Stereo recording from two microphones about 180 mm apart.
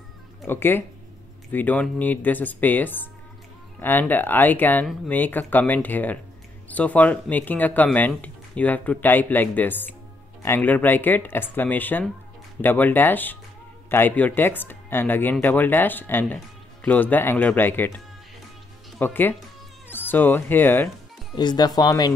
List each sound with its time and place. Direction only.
0.5 s speech: 10° left (ahead or behind)
21.4 s speech: 25° left (ahead or behind)